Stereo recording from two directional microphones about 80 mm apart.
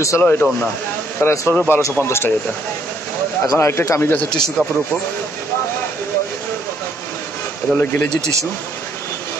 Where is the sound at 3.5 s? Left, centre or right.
Left.